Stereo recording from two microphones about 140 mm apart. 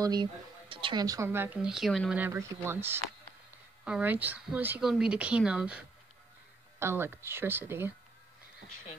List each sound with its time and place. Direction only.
0.0 s speech: 30° right (ahead or behind)
1.0 s speech: 20° right (ahead or behind); by 2.1 s centre (ahead or behind)
2.1 s speech: 15° right (ahead or behind)